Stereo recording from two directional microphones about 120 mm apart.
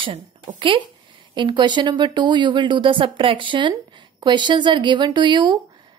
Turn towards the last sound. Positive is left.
turn(degrees=-40)  # may be behind; listen again after turning